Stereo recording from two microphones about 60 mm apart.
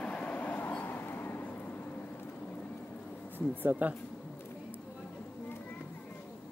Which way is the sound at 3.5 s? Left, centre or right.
Right.